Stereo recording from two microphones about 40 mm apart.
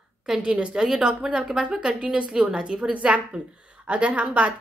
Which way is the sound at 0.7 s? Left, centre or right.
Centre.